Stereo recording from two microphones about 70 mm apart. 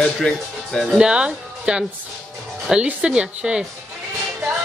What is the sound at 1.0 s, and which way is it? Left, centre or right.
A woman's voice, centre.